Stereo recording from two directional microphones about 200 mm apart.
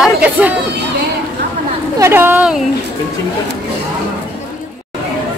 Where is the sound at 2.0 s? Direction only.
10° right (ahead or behind).